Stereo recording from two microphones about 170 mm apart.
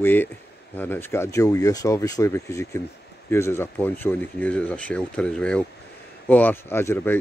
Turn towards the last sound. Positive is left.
turn(degrees=15)  # may be behind; listen again after turning